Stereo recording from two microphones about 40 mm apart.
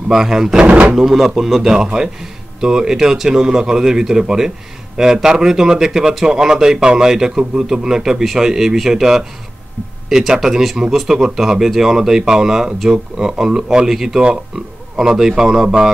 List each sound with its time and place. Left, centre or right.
0.1 s a man's voice: centre
0.7 s speech: right
0.9 s a man's voice: centre